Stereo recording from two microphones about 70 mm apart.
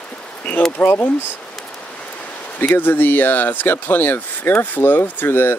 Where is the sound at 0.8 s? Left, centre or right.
Left.